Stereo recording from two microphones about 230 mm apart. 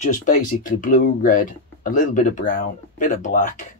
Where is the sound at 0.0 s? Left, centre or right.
Left.